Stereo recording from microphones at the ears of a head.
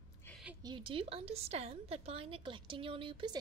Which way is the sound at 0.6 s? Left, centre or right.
Right.